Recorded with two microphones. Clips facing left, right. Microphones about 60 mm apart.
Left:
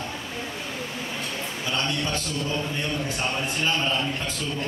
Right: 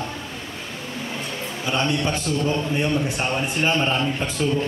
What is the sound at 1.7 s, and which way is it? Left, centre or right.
A man's voice, right.